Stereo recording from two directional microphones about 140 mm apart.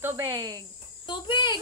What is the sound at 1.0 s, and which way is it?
Insect, 35° left (ahead or behind).